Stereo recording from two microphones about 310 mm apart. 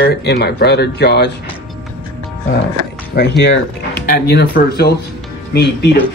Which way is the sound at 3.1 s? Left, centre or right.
Left.